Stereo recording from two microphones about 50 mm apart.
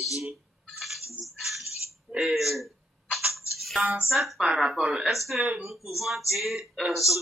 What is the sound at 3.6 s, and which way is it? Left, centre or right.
Music, centre.